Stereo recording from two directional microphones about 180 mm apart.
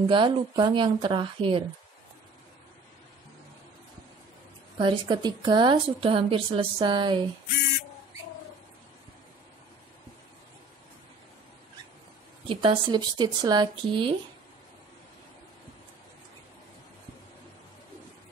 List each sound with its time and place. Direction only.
0.1 s a woman's voice: 25° right (ahead or behind)
4.7 s a woman's voice: 25° right (ahead or behind)
12.4 s a woman's voice: 25° right (ahead or behind)